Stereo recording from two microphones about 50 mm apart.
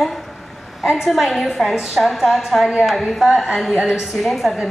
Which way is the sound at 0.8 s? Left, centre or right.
Centre.